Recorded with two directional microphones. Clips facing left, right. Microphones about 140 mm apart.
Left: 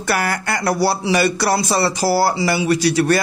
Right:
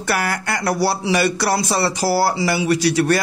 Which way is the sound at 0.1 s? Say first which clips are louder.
Left 1 dB; 40° left (ahead or behind).